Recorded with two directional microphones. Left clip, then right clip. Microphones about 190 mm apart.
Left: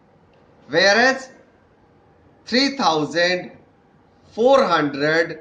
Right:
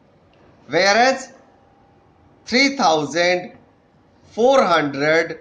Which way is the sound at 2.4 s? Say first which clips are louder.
Right 2 dB; 35° right (ahead or behind).